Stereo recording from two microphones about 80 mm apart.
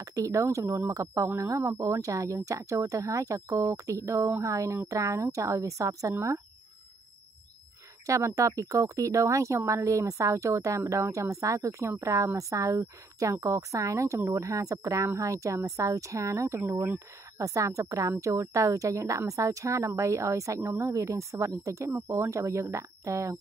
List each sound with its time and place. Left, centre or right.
0.0 s speech: right
8.4 s speech: right